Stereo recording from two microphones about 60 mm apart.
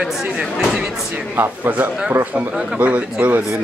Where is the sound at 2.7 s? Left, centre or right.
Right.